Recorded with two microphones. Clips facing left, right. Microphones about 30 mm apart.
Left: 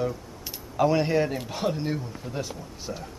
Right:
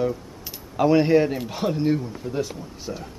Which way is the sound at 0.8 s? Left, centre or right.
Centre.